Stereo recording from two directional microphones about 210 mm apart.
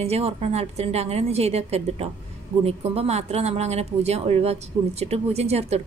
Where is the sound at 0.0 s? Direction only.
30° right (ahead or behind).